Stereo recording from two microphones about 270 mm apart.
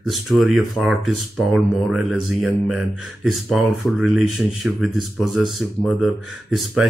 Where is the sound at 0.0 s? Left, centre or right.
Centre.